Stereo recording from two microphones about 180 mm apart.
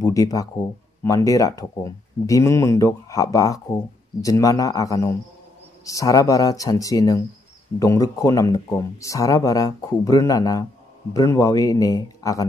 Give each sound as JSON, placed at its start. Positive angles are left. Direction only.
{"t": 0.0, "sound": "speech", "side_deg": 20}